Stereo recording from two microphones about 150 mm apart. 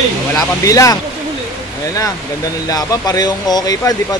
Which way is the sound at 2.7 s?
25° left (ahead or behind).